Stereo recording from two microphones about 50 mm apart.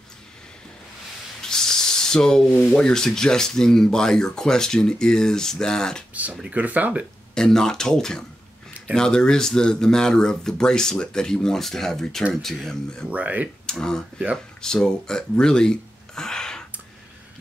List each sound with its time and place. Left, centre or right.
1.4 s snake: centre
2.7 s speech: centre
6.5 s speech: right
7.3 s speech: centre
13.1 s speech: right
13.7 s speech: centre
14.1 s speech: right
14.6 s speech: centre